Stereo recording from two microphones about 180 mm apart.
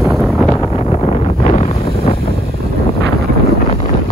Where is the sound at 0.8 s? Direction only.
35° left (ahead or behind).